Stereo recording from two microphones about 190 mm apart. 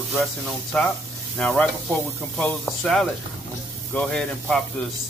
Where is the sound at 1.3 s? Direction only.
5° left (ahead or behind).